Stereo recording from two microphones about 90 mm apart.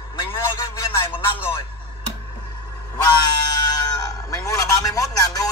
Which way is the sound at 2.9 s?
45° left (ahead or behind).